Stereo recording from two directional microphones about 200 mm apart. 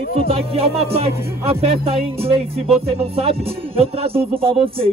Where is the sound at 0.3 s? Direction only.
30° right (ahead or behind).